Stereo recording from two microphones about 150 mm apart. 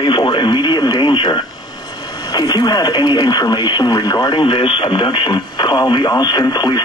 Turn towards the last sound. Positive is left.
turn(degrees=30)  # may be behind; listen again after turning